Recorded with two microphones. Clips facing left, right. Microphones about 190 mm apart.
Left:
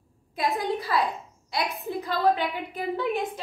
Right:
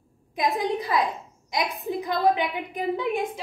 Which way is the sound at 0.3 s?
15° right (ahead or behind).